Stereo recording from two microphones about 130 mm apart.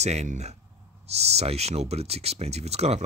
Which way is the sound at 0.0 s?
60° right (ahead or behind).